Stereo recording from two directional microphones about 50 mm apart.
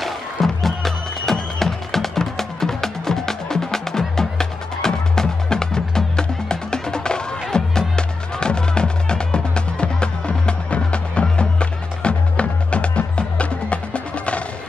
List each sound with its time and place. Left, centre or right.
0.0 s music: centre; by 14.4 s left